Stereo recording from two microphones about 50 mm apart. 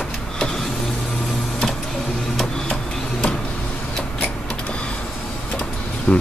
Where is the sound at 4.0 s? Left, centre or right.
Left.